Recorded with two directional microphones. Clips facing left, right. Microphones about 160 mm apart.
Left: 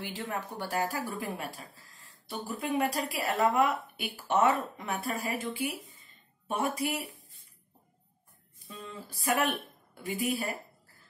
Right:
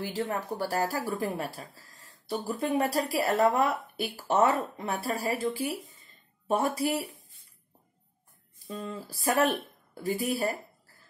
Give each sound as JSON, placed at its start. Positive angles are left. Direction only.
{"t": 0.0, "sound": "speech", "side_deg": -40}
{"t": 8.6, "sound": "speech", "side_deg": -40}